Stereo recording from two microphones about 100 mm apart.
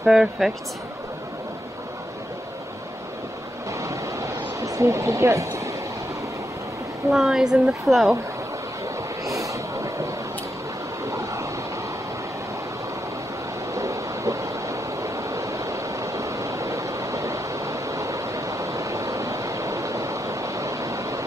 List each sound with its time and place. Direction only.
0.0 s speech: 5° right (ahead or behind)
3.8 s a sound: 30° right (ahead or behind)
7.1 s speech: 5° right (ahead or behind)
9.2 s train: 35° right (ahead or behind)
11.1 s vehicle: 30° right (ahead or behind)
13.7 s waves: 30° right (ahead or behind)